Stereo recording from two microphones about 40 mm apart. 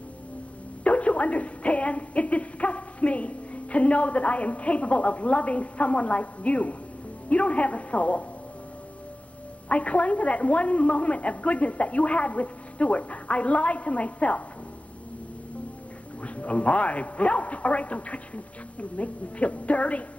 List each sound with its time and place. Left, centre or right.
0.8 s speech: left
9.7 s speech: left
16.2 s speech: left